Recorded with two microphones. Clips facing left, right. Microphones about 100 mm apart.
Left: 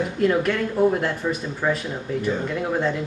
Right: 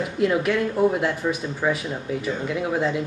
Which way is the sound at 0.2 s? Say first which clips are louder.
Even; 5° right (ahead or behind).